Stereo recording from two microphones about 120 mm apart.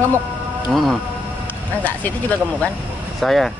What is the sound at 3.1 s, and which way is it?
Speech, centre (ahead or behind).